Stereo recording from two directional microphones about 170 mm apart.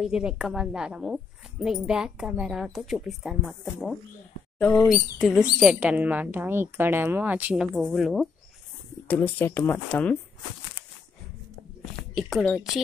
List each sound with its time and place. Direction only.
0.0 s a woman's voice: 5° right (ahead or behind)
4.6 s a woman's voice: 5° left (ahead or behind)
11.8 s speech: centre (ahead or behind)